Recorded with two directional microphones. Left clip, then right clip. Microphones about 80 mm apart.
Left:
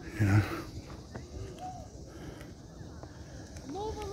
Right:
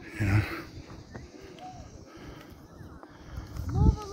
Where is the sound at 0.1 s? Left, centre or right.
Left.